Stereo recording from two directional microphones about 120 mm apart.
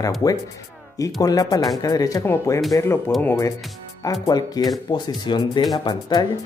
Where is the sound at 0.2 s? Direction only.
35° left (ahead or behind).